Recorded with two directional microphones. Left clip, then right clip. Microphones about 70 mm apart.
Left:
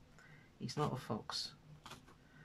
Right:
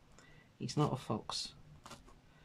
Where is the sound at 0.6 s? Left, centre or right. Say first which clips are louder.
Right 4 dB; right.